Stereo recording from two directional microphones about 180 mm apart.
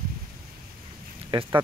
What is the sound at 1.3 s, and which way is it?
Speech, 25° right (ahead or behind).